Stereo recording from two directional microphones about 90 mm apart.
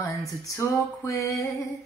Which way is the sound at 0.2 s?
40° left (ahead or behind).